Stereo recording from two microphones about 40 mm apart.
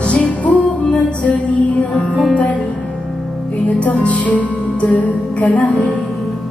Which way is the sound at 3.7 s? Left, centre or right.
Left.